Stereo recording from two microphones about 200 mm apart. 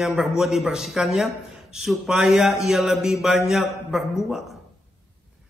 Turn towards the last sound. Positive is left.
turn(degrees=0)  # may be behind; listen again after turning